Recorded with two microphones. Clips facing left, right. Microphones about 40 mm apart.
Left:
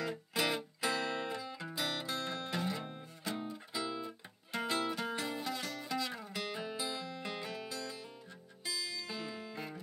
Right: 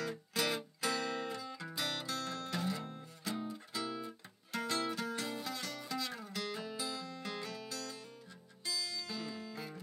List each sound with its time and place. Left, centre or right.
0.0 s music: centre
2.0 s music: left